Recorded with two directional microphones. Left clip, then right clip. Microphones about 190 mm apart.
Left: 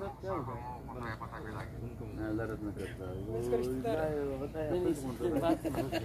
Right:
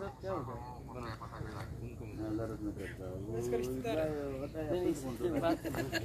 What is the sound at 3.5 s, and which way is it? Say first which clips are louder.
Speech: left 3 dB; 25° left (ahead or behind).